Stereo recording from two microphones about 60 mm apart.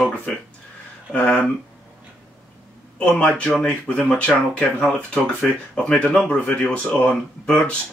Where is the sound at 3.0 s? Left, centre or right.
Centre.